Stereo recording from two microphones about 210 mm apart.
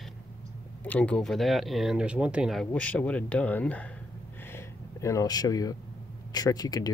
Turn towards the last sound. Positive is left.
turn(degrees=20)  # may be behind; listen again after turning